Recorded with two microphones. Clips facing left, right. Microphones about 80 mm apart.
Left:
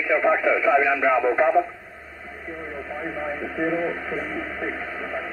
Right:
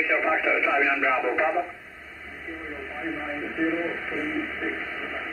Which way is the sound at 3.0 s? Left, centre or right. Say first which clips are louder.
Left 1 dB; left.